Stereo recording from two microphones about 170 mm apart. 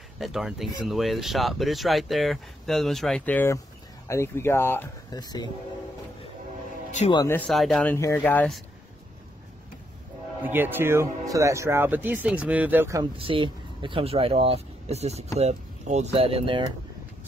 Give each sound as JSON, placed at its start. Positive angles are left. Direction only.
{"t": 0.2, "sound": "speech", "side_deg": 0}
{"t": 7.4, "sound": "speech", "side_deg": 0}
{"t": 10.4, "sound": "speech", "side_deg": -10}
{"t": 13.2, "sound": "speech", "side_deg": -30}